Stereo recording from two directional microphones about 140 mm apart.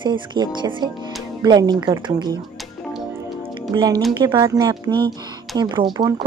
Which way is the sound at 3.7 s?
30° right (ahead or behind).